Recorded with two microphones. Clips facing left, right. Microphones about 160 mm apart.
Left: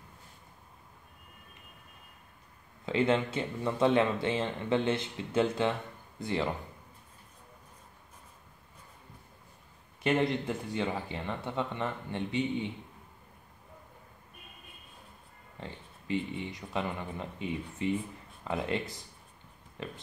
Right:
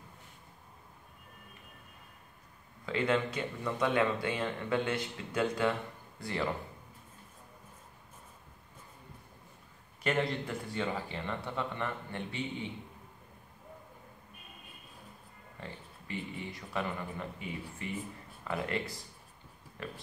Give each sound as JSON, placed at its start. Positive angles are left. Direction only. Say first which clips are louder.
{"t": 2.8, "sound": "speech", "louder": "left 3 dB", "side_deg": 25}
{"t": 10.0, "sound": "speech", "louder": "left 4 dB", "side_deg": 20}
{"t": 16.1, "sound": "speech", "louder": "left 6 dB", "side_deg": 20}